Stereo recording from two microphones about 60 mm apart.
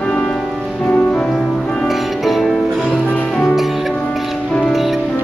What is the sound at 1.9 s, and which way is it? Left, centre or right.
Music, centre.